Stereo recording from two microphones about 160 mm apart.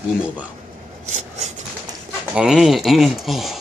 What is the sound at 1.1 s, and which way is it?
Rub, 45° right (ahead or behind).